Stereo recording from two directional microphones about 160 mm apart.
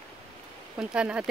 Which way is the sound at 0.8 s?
5° right (ahead or behind).